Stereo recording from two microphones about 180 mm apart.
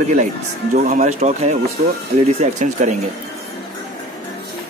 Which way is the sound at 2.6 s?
40° right (ahead or behind).